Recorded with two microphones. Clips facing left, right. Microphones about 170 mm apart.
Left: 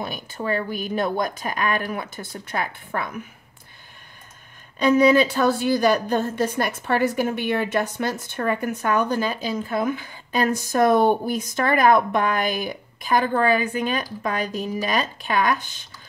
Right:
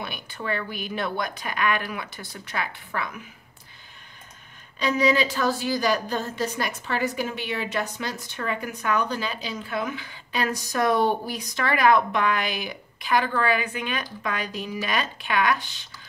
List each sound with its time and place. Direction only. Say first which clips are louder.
0.0 s a woman's voice: left 5 dB; 40° left (ahead or behind)
4.7 s a woman's voice: left 6 dB; 50° left (ahead or behind)